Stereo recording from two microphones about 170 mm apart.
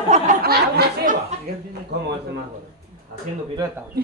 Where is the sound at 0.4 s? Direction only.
70° right (ahead or behind).